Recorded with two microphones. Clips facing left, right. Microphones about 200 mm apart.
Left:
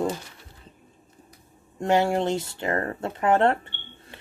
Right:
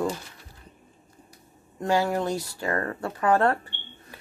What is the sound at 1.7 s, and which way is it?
Speech, 25° left (ahead or behind).